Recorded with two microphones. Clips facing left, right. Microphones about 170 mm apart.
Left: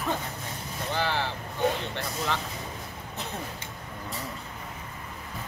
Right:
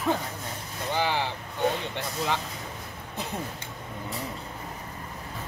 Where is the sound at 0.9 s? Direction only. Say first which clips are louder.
Right 2 dB; 15° right (ahead or behind).